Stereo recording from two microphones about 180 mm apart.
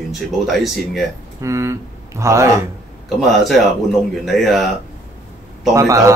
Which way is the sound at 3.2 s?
Centre (ahead or behind).